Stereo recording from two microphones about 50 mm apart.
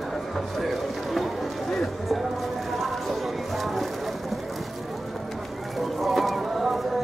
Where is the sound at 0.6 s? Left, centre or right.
Centre.